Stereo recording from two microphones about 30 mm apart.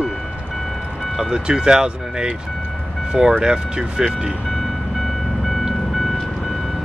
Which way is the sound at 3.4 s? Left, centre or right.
Right.